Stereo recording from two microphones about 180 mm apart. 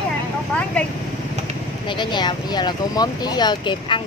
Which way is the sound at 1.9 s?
25° left (ahead or behind).